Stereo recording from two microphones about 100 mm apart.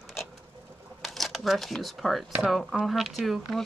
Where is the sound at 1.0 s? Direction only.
Centre (ahead or behind).